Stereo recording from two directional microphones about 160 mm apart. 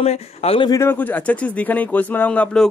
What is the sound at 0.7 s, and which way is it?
Speech, 15° left (ahead or behind).